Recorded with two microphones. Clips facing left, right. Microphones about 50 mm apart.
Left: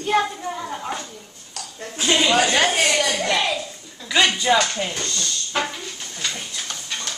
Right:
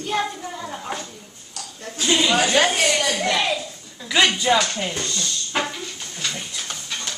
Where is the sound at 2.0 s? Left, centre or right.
Left.